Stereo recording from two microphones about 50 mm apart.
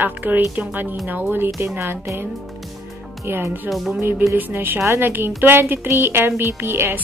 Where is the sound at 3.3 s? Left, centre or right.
Right.